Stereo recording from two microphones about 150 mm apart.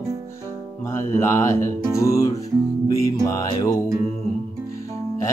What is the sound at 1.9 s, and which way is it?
Music, 20° left (ahead or behind).